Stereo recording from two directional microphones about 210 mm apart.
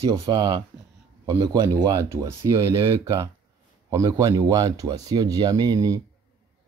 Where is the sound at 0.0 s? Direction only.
15° right (ahead or behind).